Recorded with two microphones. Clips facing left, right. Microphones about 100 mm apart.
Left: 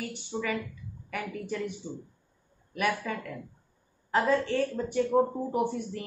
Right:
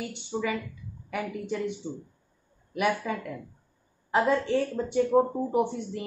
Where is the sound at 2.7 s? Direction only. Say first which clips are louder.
Right 3 dB; 15° right (ahead or behind).